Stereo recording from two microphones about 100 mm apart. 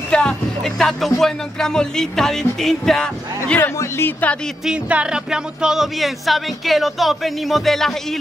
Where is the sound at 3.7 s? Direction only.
30° left (ahead or behind).